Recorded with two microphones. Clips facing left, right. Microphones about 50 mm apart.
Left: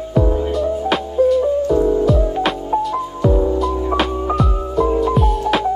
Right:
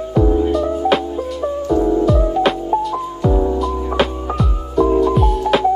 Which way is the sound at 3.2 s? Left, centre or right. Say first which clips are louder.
Left 1 dB; centre.